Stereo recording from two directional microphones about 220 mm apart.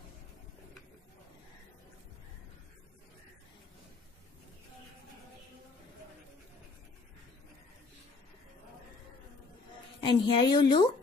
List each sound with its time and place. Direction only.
9.9 s a woman's voice: 20° left (ahead or behind)